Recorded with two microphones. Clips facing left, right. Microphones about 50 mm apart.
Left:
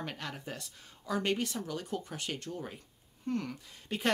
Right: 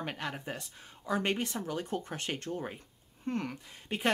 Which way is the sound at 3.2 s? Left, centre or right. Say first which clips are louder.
Even; right.